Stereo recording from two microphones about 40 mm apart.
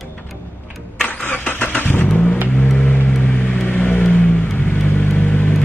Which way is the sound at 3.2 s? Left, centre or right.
Left.